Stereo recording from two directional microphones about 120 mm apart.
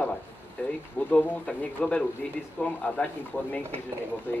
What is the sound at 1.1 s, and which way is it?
Speech, 10° left (ahead or behind).